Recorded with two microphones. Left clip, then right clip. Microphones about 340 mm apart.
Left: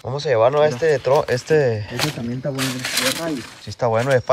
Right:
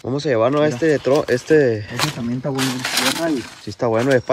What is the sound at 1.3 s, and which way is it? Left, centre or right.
Speech, left.